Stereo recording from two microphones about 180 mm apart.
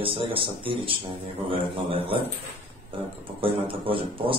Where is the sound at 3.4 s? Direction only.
30° right (ahead or behind).